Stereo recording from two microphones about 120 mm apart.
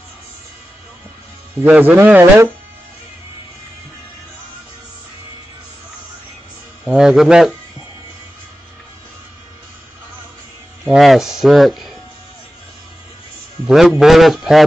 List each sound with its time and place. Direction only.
1.6 s speech: 15° right (ahead or behind)
6.8 s speech: 5° right (ahead or behind)
10.9 s speech: centre (ahead or behind)
13.7 s speech: 5° right (ahead or behind)